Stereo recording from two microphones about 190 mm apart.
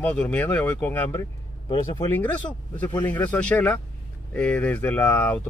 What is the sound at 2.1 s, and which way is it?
Speech, 10° left (ahead or behind).